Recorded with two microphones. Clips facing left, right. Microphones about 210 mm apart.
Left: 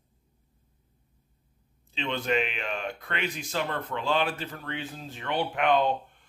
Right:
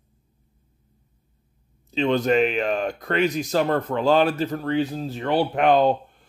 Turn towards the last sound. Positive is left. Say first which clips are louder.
# right 6 dB
turn(degrees=-35)  # may be behind; listen again after turning